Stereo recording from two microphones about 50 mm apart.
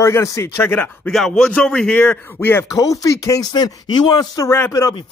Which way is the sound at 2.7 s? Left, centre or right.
Left.